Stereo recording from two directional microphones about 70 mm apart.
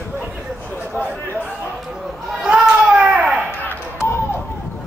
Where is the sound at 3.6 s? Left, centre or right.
Left.